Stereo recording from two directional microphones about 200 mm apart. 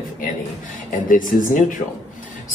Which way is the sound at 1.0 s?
40° left (ahead or behind).